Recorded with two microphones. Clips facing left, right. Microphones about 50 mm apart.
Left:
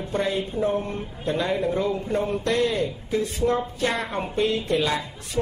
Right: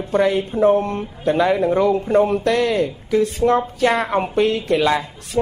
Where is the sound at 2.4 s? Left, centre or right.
Right.